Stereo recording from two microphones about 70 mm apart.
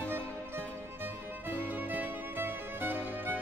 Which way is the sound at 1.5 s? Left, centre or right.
Right.